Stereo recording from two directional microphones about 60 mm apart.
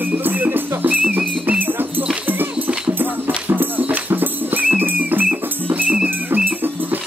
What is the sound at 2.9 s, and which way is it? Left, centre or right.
Music, right.